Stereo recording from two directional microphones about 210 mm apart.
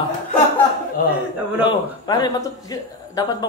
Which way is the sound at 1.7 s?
20° left (ahead or behind).